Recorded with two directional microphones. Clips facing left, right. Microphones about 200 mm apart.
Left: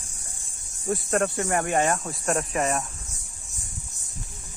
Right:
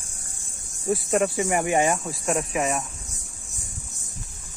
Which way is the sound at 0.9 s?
5° right (ahead or behind).